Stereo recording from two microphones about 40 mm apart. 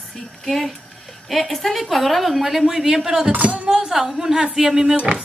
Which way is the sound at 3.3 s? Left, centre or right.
Right.